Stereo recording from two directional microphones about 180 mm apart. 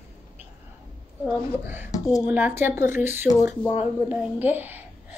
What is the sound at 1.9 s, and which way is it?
Speech, 20° left (ahead or behind).